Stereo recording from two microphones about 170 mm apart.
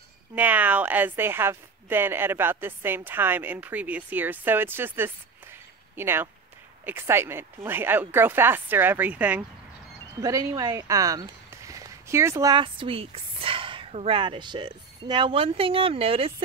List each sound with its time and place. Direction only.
0.4 s a woman's voice: 10° right (ahead or behind)
10.2 s speech: 20° right (ahead or behind)